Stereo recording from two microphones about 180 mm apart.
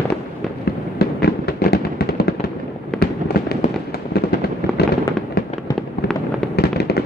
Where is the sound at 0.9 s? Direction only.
60° left (ahead or behind).